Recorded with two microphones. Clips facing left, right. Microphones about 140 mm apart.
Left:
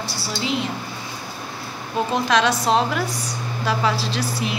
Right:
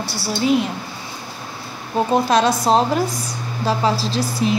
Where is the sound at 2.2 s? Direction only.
35° right (ahead or behind).